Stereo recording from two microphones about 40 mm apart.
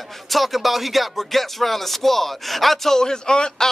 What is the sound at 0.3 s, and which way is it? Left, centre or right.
Speech, centre.